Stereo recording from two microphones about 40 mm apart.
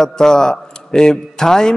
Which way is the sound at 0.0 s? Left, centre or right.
Centre.